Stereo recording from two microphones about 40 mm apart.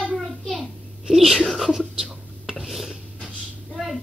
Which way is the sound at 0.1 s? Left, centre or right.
Centre.